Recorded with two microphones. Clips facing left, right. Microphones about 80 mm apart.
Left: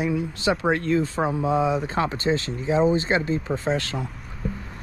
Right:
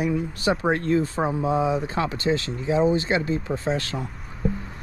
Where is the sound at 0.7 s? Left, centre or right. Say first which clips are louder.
Even; right.